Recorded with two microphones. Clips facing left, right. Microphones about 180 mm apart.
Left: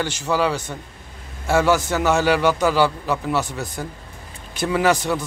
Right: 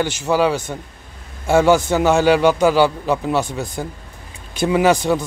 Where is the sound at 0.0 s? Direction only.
15° right (ahead or behind).